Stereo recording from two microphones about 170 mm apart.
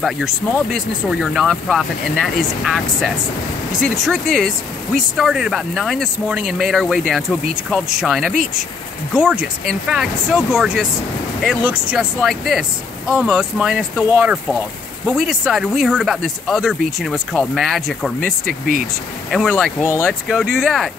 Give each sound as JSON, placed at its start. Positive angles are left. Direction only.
{"t": 0.7, "sound": "speech", "side_deg": 0}
{"t": 19.3, "sound": "speech", "side_deg": 0}
{"t": 19.8, "sound": "speech", "side_deg": 15}
{"t": 20.1, "sound": "speech", "side_deg": 0}